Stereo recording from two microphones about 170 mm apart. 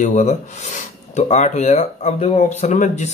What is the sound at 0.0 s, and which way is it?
A man's voice, 45° left (ahead or behind).